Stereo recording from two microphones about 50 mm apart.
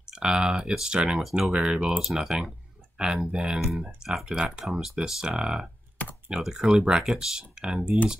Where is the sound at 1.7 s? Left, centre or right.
Centre.